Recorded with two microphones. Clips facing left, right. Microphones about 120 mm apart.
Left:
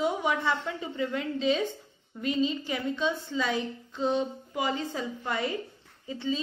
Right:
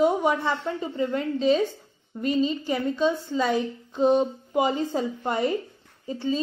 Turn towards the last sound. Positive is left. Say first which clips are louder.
# right 5 dB
turn(degrees=-40)  # may be behind; listen again after turning